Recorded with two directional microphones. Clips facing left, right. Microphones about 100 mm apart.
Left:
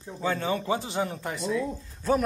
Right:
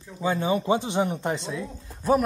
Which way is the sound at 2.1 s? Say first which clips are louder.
Right 3 dB; 10° right (ahead or behind).